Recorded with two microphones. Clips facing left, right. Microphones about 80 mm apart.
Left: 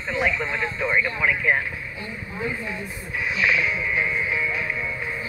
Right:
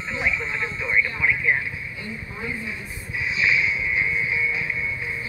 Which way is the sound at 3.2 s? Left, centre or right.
Left.